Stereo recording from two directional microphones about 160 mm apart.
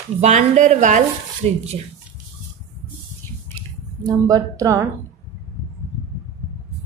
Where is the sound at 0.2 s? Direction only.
45° right (ahead or behind).